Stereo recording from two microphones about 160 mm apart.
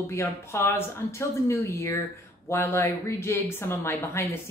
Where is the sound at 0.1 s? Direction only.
15° left (ahead or behind).